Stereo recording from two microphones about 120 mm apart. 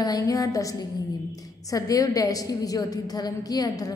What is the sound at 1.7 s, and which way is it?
A woman's voice, 30° left (ahead or behind).